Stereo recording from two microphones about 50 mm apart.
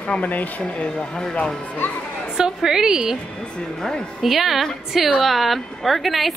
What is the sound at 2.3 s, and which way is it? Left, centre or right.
Speech, centre.